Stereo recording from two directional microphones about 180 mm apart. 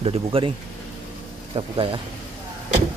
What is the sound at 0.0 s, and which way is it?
Speech, 30° right (ahead or behind).